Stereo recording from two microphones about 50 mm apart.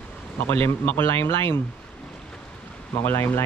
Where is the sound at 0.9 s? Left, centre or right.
Left.